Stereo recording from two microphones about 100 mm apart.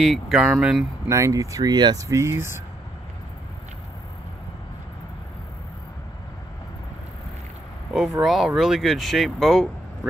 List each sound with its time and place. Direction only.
0.0 s speech: 5° right (ahead or behind)
1.0 s speech: 30° right (ahead or behind)
2.0 s speech: 30° right (ahead or behind)
7.9 s speech: 5° right (ahead or behind)